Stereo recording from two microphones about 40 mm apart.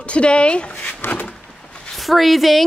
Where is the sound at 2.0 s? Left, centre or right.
Centre.